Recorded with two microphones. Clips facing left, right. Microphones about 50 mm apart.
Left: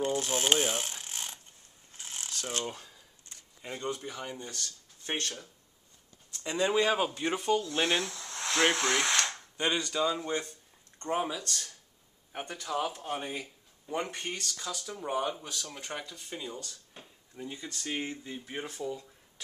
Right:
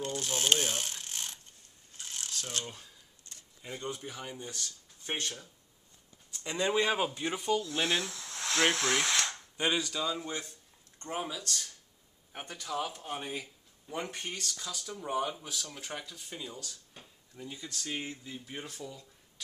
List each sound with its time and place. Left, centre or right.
0.0 s mechanisms: centre
3.3 s a sound: left
3.9 s speech: centre
6.4 s speech: centre
6.8 s speech: centre
7.1 s speech: centre
9.9 s speech: centre
11.4 s speech: centre
16.9 s speech: centre